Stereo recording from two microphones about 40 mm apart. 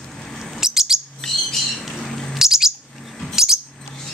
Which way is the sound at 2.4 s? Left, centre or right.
Centre.